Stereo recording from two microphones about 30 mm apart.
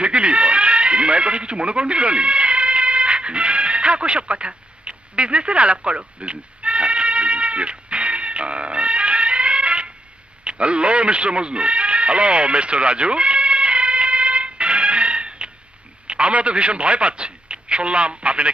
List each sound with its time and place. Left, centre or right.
0.0 s music: right
16.1 s a man's voice: right